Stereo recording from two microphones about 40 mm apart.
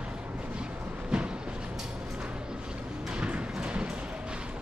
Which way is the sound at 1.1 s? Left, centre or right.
Centre.